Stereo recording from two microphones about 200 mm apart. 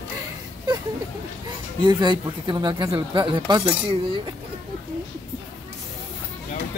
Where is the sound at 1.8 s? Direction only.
25° right (ahead or behind).